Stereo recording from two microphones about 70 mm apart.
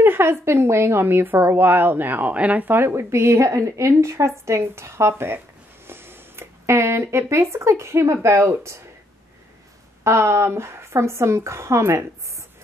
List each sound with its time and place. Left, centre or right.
0.0 s a woman's voice: right
10.0 s a woman's voice: right